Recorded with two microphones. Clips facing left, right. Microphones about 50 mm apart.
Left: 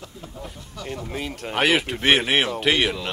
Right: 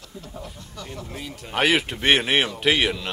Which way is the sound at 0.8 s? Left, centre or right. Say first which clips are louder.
Left 4 dB; centre.